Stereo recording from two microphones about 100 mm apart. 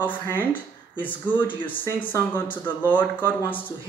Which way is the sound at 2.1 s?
20° left (ahead or behind).